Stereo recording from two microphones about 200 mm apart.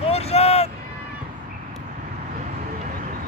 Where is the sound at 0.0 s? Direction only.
30° left (ahead or behind).